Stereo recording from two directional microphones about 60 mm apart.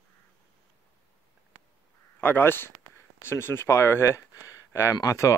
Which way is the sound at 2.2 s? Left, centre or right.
Left.